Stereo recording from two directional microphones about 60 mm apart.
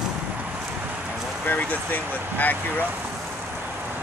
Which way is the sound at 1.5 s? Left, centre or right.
Left.